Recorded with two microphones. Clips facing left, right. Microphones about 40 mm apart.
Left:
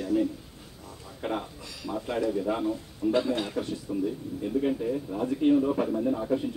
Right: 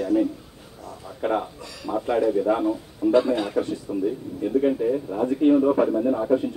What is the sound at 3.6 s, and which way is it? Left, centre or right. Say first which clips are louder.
A man's voice: right 5 dB; centre.